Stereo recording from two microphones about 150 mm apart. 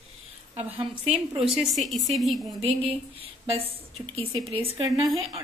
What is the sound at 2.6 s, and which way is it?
A woman's voice, 40° right (ahead or behind).